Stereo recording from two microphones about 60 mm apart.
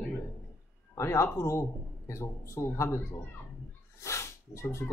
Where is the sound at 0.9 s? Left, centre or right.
Left.